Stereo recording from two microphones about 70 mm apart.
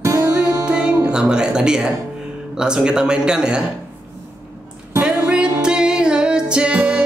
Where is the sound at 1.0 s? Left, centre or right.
Centre.